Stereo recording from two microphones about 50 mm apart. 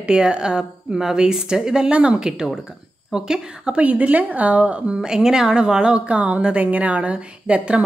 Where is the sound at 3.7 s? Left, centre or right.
Right.